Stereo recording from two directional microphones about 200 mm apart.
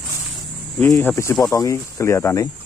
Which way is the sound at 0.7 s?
10° left (ahead or behind).